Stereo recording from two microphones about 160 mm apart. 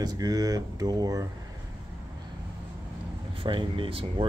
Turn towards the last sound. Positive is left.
turn(degrees=-35)  # may be behind; listen again after turning